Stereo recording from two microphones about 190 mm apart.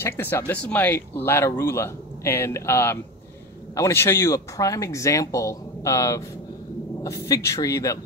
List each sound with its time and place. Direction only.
0.0 s speech: 10° left (ahead or behind)